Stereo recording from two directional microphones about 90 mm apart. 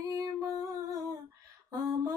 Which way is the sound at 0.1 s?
40° right (ahead or behind).